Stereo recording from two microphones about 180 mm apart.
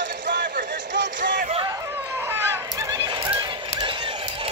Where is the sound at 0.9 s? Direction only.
80° right.